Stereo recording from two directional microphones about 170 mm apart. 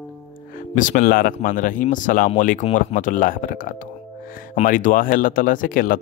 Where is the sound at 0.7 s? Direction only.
50° left (ahead or behind).